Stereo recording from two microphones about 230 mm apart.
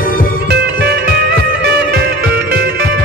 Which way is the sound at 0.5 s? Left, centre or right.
Right.